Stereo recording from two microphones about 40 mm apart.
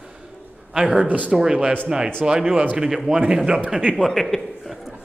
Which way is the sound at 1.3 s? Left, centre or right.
Centre.